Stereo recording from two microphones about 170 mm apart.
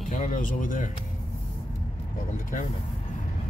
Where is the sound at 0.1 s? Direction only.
50° left (ahead or behind).